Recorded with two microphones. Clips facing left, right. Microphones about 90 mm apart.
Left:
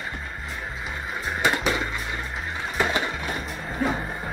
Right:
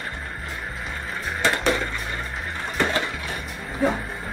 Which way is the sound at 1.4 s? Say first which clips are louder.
Even; 15° left (ahead or behind).